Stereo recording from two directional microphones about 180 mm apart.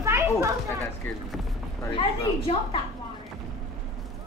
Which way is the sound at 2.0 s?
25° left (ahead or behind).